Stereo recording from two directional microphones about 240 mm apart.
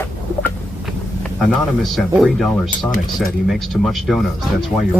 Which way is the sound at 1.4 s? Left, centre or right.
Centre.